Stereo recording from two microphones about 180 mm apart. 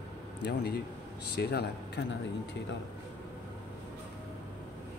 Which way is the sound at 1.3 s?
65° left (ahead or behind).